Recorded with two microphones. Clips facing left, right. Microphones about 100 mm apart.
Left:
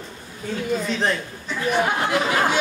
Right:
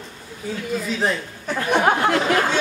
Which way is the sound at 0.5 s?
10° right (ahead or behind).